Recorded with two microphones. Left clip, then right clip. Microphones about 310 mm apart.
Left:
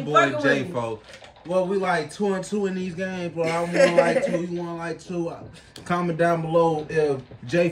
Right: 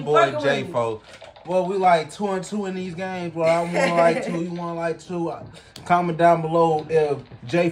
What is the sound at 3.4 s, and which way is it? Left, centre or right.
Speech, centre.